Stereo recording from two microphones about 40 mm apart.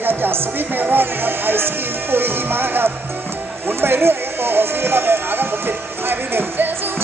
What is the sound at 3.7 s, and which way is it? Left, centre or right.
Speech, right.